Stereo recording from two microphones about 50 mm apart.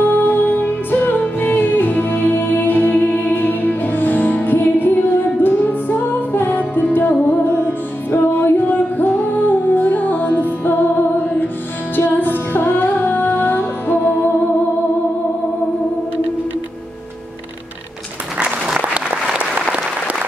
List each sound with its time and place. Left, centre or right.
0.0 s music: left
11.9 s music: left
19.3 s applause: right